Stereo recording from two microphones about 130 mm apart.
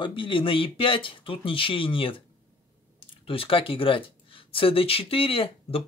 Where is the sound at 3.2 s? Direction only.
45° left (ahead or behind).